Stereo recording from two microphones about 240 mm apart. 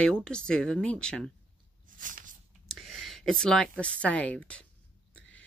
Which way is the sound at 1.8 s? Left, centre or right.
Right.